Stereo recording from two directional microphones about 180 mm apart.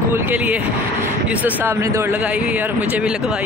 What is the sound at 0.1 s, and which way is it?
Speech, 10° right (ahead or behind).